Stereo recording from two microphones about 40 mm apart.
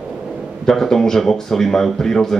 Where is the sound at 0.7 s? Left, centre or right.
Centre.